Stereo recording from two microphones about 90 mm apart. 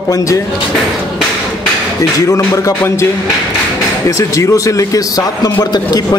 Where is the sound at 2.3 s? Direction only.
35° left (ahead or behind).